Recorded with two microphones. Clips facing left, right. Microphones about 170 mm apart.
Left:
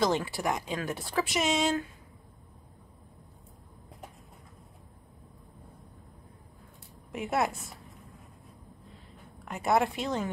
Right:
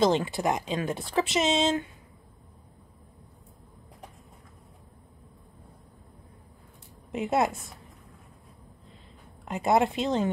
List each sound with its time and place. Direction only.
0.0 s speech: 20° right (ahead or behind)
7.1 s speech: 20° right (ahead or behind)
9.4 s speech: 20° right (ahead or behind)